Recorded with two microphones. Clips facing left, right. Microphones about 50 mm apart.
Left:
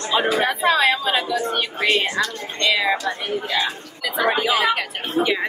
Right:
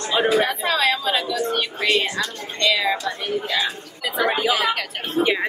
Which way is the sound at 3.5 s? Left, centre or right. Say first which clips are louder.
Left 1 dB; centre.